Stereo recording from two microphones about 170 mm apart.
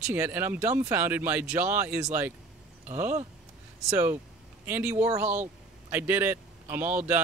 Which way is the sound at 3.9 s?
15° right (ahead or behind).